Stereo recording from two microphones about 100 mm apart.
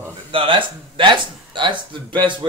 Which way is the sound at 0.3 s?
60° right (ahead or behind).